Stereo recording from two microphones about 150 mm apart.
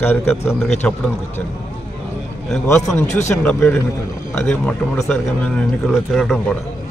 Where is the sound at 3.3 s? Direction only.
15° left (ahead or behind).